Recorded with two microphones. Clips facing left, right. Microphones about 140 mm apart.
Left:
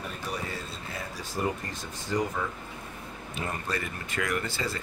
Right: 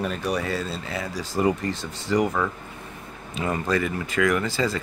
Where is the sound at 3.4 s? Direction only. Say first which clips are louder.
Right 9 dB; 90° right.